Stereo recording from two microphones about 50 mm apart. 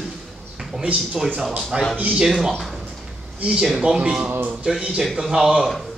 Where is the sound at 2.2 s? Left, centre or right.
Centre.